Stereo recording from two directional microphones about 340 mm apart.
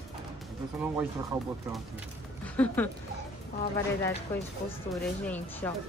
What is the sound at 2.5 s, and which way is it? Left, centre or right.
Speech, centre.